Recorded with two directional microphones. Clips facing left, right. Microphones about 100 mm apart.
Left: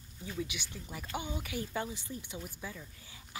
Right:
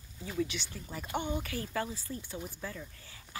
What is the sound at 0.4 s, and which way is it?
Speech, 10° left (ahead or behind).